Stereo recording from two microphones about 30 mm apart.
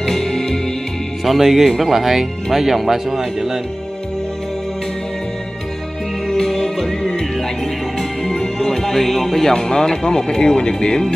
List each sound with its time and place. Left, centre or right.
0.1 s music: centre
1.2 s speech: centre
6.2 s music: centre
8.2 s speech: centre